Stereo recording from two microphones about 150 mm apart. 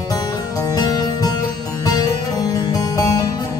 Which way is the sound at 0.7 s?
25° left (ahead or behind).